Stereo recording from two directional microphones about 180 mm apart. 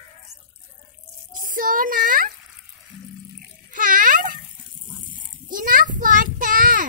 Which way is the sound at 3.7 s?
50° right (ahead or behind).